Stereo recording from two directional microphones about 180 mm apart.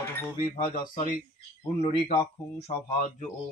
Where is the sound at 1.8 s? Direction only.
30° left (ahead or behind).